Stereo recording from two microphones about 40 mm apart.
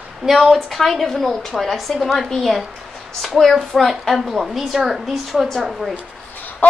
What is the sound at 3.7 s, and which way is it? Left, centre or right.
A woman's voice, centre.